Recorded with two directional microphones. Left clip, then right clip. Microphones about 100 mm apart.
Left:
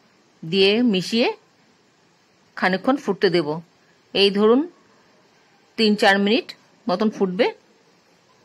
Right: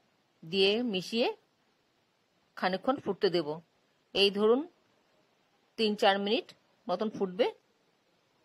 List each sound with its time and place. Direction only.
0.5 s a woman's voice: 45° right (ahead or behind)
2.5 s a woman's voice: 40° right (ahead or behind)
5.8 s a woman's voice: 40° right (ahead or behind)